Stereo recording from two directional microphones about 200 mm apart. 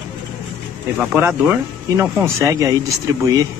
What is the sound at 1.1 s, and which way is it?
Speech, 10° right (ahead or behind).